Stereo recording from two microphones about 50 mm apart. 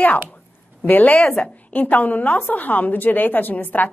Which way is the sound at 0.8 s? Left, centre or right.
Left.